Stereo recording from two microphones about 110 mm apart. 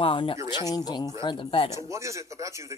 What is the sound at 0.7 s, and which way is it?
Speech, 35° left (ahead or behind).